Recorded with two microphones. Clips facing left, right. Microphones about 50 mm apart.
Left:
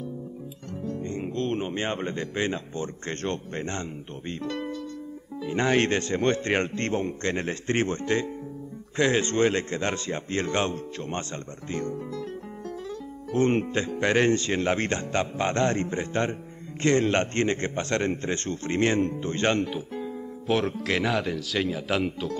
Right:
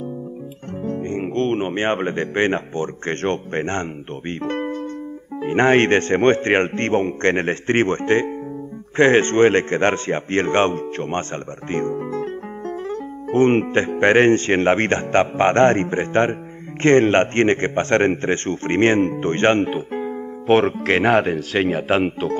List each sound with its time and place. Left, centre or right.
0.8 s a man's voice: right